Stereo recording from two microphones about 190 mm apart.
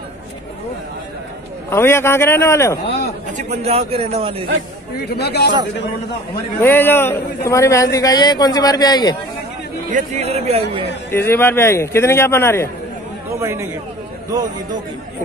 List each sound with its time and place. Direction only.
1.7 s a man's voice: 15° left (ahead or behind)
3.3 s a man's voice: 35° right (ahead or behind)
5.0 s a man's voice: 60° left (ahead or behind)
6.6 s a man's voice: 10° left (ahead or behind)
9.8 s a man's voice: 35° right (ahead or behind)
11.1 s a man's voice: 10° left (ahead or behind)
13.4 s speech: 15° right (ahead or behind)